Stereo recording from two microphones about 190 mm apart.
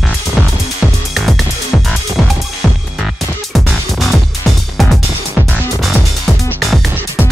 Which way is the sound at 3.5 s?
Centre (ahead or behind).